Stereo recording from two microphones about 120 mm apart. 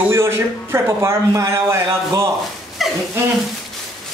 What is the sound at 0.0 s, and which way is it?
Speech, 20° right (ahead or behind).